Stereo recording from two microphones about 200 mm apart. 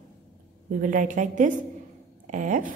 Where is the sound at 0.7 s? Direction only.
40° right (ahead or behind).